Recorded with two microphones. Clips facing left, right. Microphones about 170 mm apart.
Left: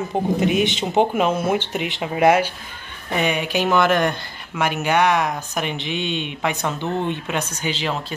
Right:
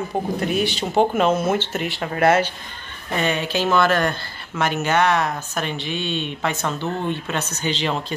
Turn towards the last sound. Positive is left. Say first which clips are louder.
# right 1 dB
turn(degrees=5)  # may be behind; listen again after turning